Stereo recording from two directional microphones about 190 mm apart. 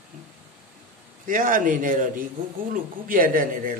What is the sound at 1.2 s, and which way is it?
A man's voice, 45° right (ahead or behind).